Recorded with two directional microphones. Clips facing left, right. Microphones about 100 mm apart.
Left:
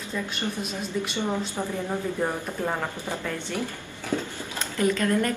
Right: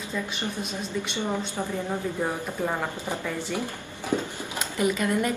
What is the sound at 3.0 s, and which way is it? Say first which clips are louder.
A woman's voice: right 1 dB; 15° right (ahead or behind).